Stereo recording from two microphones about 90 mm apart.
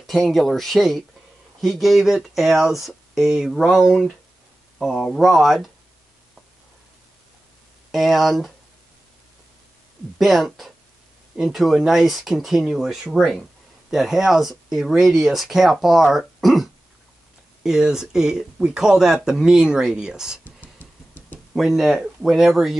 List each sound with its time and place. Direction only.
0.0 s speech: centre (ahead or behind)
7.9 s speech: centre (ahead or behind)
10.1 s speech: centre (ahead or behind)
17.6 s speech: 5° right (ahead or behind)
20.8 s a sound: 20° left (ahead or behind)
21.5 s speech: 5° right (ahead or behind)